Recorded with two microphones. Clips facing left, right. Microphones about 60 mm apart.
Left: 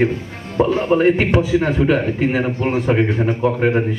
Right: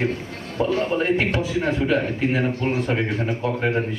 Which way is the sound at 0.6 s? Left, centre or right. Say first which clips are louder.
Left 7 dB; left.